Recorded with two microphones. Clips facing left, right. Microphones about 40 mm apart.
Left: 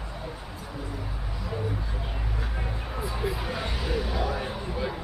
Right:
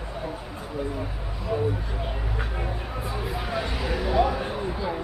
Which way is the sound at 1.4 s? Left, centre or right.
Centre.